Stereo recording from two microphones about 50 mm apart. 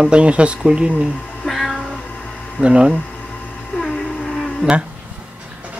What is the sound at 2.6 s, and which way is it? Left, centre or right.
Speech, right.